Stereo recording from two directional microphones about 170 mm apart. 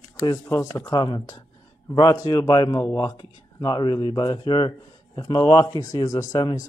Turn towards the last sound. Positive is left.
turn(degrees=20)  # may be behind; listen again after turning